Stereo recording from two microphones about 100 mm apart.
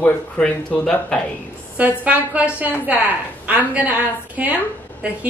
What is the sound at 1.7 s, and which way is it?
A woman's voice, 15° right (ahead or behind).